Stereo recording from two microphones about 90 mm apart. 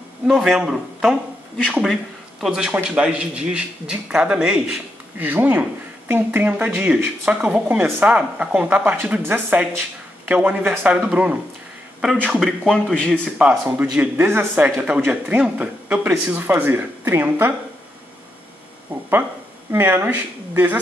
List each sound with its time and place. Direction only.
0.3 s speech: 5° right (ahead or behind)
12.4 s speech: centre (ahead or behind)
13.4 s speech: 15° right (ahead or behind)
19.7 s speech: 25° right (ahead or behind)